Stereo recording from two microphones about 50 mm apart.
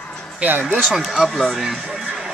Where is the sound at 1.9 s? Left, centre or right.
Centre.